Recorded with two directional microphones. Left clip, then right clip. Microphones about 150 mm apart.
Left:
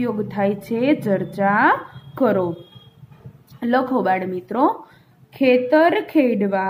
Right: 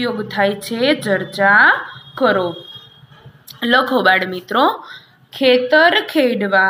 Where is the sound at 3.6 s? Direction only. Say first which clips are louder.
Right 5 dB; 10° left (ahead or behind).